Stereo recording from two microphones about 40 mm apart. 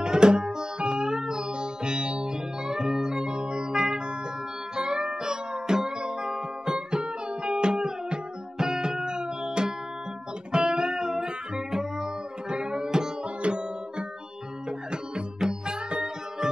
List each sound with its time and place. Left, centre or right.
0.0 s music: right
15.4 s music: centre